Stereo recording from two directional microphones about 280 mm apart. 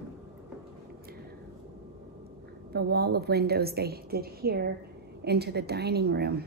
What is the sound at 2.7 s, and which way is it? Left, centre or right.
A woman's voice, right.